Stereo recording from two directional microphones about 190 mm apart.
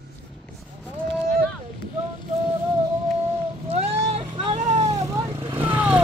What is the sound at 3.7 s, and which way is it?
Vehicle, 30° right (ahead or behind).